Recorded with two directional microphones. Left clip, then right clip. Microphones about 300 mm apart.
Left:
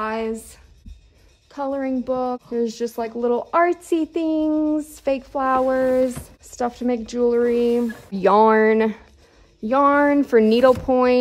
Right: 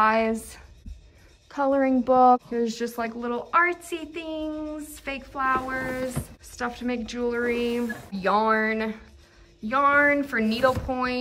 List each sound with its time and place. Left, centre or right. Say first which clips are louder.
0.0 s a woman's voice: right 4 dB; centre
8.1 s speech: left 8 dB; left